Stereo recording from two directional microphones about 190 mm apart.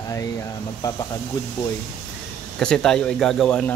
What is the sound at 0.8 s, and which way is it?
Speech, 15° left (ahead or behind).